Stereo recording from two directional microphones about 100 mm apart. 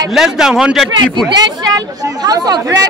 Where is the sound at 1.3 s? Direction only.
40° right (ahead or behind).